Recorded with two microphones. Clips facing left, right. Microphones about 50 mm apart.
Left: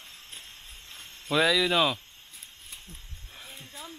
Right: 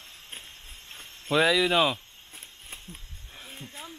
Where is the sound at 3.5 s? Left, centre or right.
Right.